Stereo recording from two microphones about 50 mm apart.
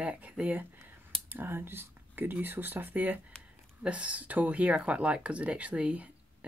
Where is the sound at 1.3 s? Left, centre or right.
Right.